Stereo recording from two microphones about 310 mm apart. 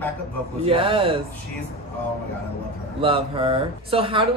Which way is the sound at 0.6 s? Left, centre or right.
Centre.